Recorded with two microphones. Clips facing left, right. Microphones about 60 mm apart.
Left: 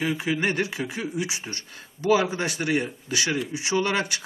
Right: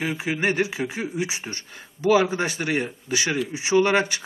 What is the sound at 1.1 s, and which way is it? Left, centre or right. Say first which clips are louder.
A man's voice: right 2 dB; right.